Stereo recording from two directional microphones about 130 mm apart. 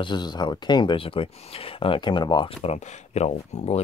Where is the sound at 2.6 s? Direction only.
60° left (ahead or behind).